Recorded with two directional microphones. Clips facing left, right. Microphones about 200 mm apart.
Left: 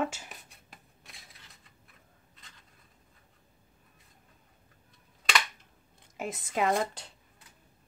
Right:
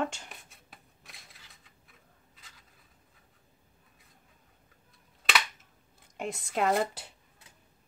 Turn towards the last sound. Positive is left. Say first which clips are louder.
# right 1 dB
turn(degrees=-5)  # may be behind; listen again after turning